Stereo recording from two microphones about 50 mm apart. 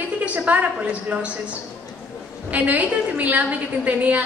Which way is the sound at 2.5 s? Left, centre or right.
Right.